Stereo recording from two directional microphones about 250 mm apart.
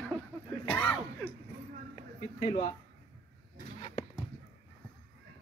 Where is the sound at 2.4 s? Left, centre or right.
Centre.